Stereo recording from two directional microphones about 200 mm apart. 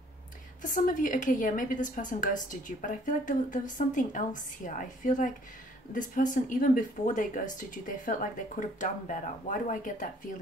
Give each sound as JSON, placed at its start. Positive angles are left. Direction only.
{"t": 0.6, "sound": "a woman's voice", "side_deg": 40}